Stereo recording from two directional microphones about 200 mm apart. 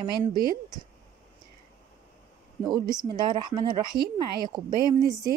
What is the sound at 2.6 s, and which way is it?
A woman's voice, 20° right (ahead or behind).